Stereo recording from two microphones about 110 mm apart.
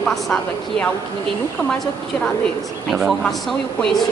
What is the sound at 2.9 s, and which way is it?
Speech, centre (ahead or behind).